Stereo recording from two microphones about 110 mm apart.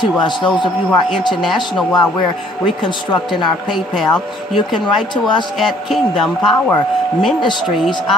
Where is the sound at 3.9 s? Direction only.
5° left (ahead or behind).